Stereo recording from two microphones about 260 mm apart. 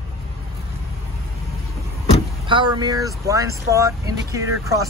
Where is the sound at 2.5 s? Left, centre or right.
Centre.